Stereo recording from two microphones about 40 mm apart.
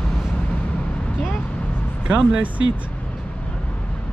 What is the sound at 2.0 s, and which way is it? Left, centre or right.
Speech, right.